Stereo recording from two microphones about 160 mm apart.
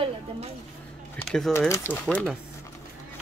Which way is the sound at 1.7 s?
15° left (ahead or behind).